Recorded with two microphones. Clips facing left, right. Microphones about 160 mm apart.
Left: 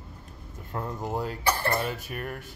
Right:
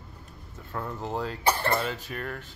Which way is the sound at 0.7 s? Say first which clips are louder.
Left 1 dB; 15° left (ahead or behind).